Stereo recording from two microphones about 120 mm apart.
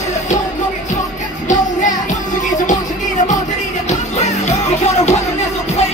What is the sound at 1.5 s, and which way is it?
Music, 90° left.